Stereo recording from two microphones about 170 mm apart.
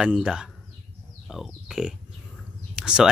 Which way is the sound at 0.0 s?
5° right (ahead or behind).